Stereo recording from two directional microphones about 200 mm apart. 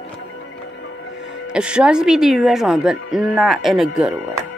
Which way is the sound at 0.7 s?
70° left (ahead or behind).